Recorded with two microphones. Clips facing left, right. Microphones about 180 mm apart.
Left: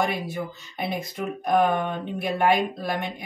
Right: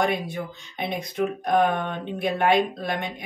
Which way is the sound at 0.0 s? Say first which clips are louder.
Right 1 dB; 5° left (ahead or behind).